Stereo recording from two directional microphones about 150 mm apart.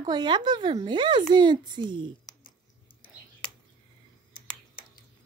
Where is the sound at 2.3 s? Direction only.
25° left (ahead or behind).